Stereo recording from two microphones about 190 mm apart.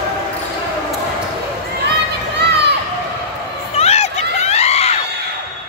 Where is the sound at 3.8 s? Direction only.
35° left (ahead or behind).